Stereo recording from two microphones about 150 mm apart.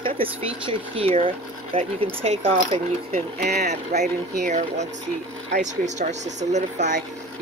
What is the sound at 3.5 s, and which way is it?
Speech, 50° right (ahead or behind).